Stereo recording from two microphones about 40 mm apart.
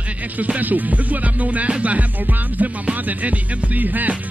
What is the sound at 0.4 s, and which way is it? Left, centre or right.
Music, right.